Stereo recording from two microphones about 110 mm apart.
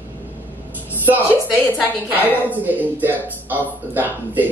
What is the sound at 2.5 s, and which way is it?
Speech, 15° right (ahead or behind).